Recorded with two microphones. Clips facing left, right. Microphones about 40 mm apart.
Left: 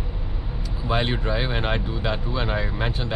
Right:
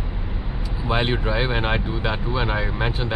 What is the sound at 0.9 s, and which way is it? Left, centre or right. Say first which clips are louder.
Speech: right 2 dB; centre.